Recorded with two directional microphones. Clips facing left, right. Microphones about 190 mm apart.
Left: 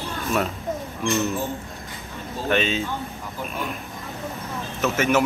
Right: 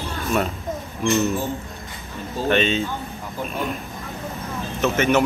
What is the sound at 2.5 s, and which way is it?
Speech, 5° left (ahead or behind).